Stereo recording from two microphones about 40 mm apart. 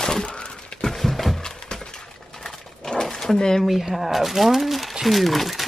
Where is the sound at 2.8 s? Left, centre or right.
Centre.